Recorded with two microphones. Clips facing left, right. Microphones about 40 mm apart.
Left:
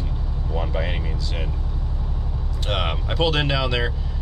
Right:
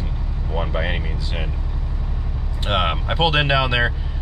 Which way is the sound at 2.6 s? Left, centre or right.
Right.